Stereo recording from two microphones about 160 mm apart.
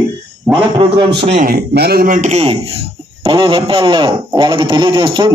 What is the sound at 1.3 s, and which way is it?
A man's voice, 65° right (ahead or behind).